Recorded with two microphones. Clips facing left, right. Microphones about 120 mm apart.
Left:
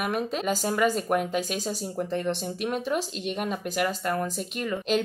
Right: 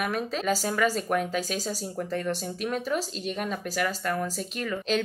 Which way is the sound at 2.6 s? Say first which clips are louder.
Even; 10° left (ahead or behind).